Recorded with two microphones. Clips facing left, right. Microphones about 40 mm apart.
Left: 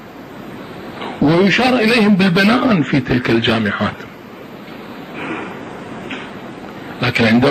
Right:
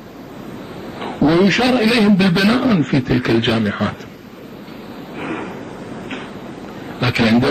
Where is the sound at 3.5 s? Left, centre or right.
Left.